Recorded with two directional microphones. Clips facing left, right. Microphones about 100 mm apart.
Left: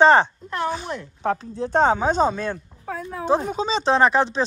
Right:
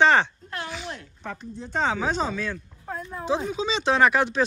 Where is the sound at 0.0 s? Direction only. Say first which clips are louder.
Left 5 dB; 40° left (ahead or behind).